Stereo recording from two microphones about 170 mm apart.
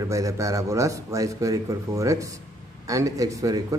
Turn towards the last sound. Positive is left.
turn(degrees=-20)  # may be behind; listen again after turning